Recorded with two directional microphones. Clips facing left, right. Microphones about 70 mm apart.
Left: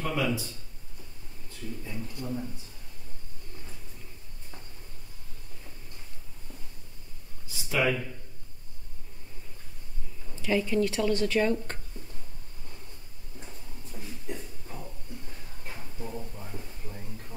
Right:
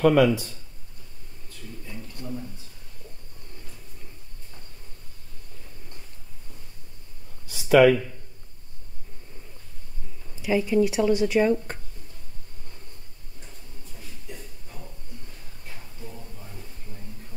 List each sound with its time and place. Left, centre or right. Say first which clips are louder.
0.0 s speech: right 12 dB; right
7.4 s speech: right 12 dB; right
10.4 s speech: right 4 dB; centre